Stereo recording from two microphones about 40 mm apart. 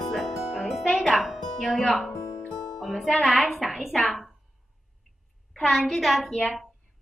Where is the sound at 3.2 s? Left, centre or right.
Centre.